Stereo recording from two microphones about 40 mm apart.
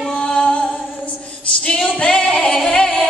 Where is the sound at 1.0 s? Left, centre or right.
Left.